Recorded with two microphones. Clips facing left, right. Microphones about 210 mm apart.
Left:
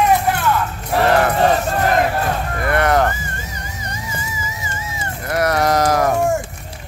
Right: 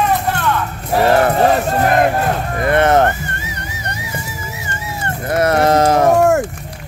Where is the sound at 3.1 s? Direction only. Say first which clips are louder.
Right 3 dB; 70° right (ahead or behind).